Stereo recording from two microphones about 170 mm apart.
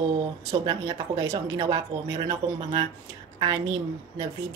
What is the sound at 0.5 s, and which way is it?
Speech, 20° right (ahead or behind).